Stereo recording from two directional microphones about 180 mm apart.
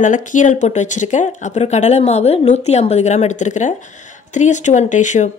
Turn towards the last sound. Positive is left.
turn(degrees=45)  # may be behind; listen again after turning